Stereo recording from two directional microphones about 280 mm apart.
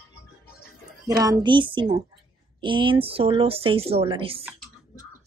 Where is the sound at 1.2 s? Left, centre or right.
Centre.